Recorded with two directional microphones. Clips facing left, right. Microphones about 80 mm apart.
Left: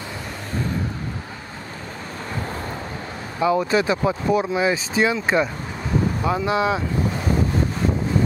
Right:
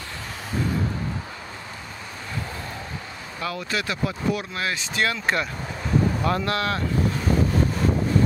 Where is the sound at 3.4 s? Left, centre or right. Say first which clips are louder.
Left 10 dB; left.